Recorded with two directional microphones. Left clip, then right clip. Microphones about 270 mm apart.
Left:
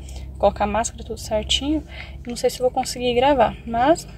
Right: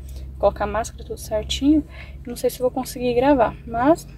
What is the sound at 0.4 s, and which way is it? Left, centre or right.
Speech, centre.